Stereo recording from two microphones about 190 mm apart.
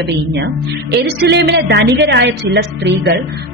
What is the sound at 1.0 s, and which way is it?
A woman's voice, 60° right (ahead or behind).